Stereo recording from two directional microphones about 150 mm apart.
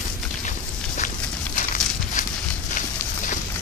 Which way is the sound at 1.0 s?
60° left (ahead or behind).